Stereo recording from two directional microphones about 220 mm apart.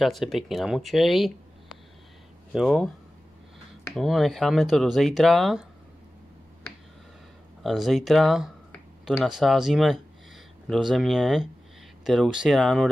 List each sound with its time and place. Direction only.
0.0 s speech: centre (ahead or behind)
3.9 s speech: centre (ahead or behind)
7.6 s speech: centre (ahead or behind)